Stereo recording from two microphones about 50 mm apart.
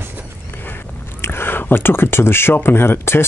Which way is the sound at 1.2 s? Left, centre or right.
Left.